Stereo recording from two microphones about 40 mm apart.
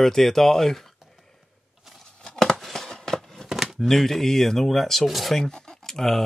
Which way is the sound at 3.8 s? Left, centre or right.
Centre.